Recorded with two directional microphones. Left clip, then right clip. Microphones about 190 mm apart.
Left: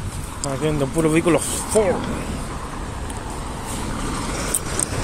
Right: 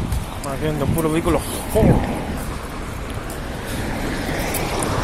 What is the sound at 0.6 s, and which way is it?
Speech, 45° left (ahead or behind).